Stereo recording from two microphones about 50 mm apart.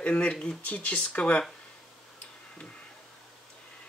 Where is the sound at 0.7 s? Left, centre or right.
Left.